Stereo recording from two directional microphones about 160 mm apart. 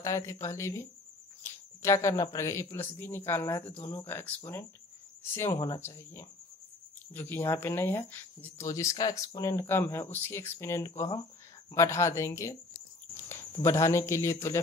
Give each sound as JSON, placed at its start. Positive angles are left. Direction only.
{"t": 0.0, "sound": "speech", "side_deg": 20}